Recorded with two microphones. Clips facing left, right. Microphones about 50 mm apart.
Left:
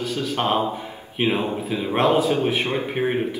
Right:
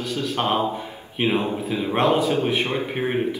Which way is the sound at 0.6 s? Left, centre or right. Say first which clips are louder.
Right 1 dB; centre.